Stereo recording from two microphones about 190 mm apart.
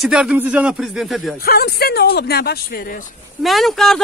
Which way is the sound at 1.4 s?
55° left (ahead or behind).